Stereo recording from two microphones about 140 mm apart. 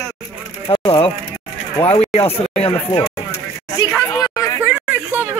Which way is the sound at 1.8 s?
45° left (ahead or behind).